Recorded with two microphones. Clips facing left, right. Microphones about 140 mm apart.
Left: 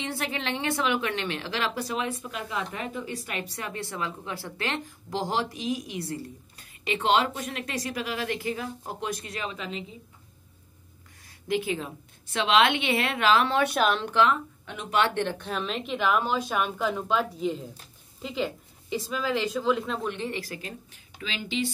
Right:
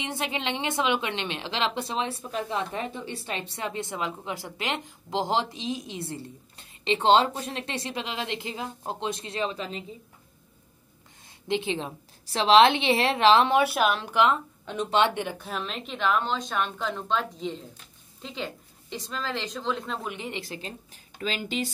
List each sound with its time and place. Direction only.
0.0 s a woman's voice: 20° right (ahead or behind); by 9.8 s 35° right (ahead or behind)
11.2 s a woman's voice: 25° right (ahead or behind)
13.6 s a woman's voice: 5° right (ahead or behind)
14.3 s speech: 30° right (ahead or behind)
15.1 s a woman's voice: 10° right (ahead or behind)
20.2 s a woman's voice: 20° right (ahead or behind)
20.9 s speech: 40° right (ahead or behind)